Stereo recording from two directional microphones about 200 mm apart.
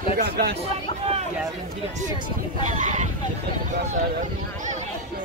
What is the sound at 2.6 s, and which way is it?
Speech, 35° right (ahead or behind).